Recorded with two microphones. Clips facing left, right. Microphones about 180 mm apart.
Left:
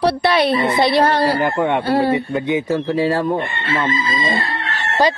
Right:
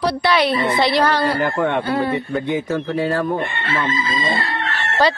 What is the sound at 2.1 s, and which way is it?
Speech, 20° left (ahead or behind).